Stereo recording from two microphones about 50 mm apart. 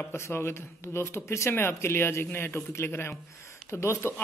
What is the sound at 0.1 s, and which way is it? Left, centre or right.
A man's voice, left.